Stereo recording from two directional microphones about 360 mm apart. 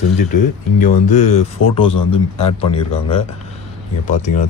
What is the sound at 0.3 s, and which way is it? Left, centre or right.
Speech, left.